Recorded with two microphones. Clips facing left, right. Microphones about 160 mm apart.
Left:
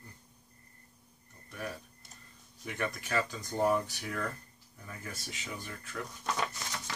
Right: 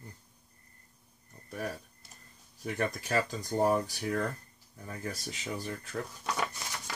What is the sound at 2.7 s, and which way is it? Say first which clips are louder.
Speech: right 3 dB; 40° right (ahead or behind).